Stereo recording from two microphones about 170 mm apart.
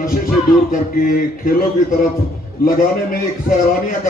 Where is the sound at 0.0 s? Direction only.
55° left (ahead or behind).